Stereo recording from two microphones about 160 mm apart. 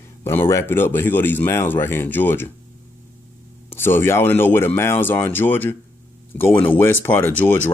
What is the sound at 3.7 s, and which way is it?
Speech, 15° left (ahead or behind).